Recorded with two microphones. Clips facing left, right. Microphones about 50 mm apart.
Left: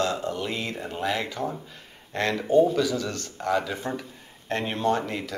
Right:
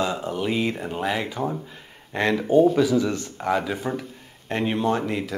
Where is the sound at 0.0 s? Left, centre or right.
Centre.